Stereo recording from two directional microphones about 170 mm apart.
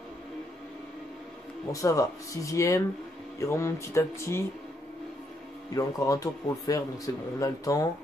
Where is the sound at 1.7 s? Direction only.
20° left (ahead or behind).